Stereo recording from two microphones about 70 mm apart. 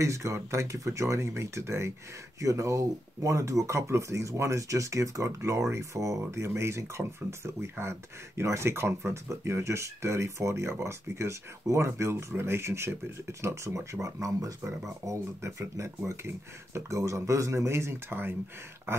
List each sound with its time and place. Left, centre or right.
0.0 s speech: right
16.7 s speech: right